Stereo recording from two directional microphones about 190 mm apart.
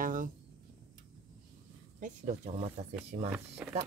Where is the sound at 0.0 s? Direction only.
45° right (ahead or behind).